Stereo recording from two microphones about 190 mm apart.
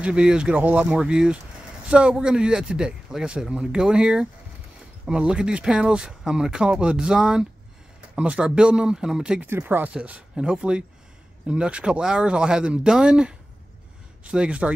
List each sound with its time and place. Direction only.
0.0 s speech: 5° right (ahead or behind)